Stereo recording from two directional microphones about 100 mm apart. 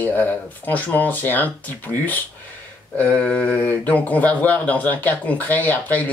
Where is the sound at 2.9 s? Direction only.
15° left (ahead or behind).